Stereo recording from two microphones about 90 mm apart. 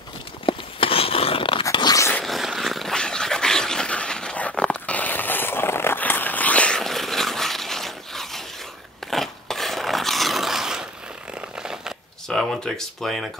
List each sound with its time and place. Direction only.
0.5 s a sound: 90° left
1.7 s dog: 55° left (ahead or behind)
2.2 s dog: centre (ahead or behind); by 6.8 s 15° left (ahead or behind)
6.8 s dog: 5° left (ahead or behind)
9.1 s filing: 5° left (ahead or behind)
11.6 s shuffling cards: 5° right (ahead or behind)
12.3 s speech: 5° left (ahead or behind)